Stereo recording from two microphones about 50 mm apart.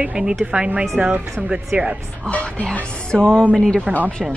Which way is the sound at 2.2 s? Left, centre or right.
Left.